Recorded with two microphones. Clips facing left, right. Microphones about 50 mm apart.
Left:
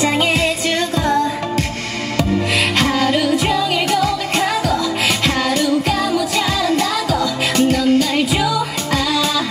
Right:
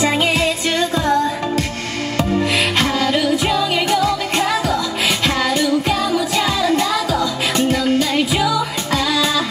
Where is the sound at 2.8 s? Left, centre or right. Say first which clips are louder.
Left 1 dB; left.